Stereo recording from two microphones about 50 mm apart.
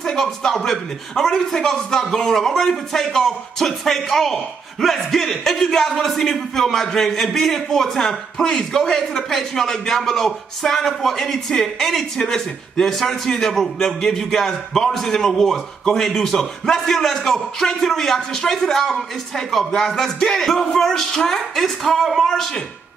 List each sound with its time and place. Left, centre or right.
0.0 s a man's voice: centre